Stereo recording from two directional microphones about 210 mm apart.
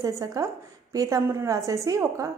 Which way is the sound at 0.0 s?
15° right (ahead or behind).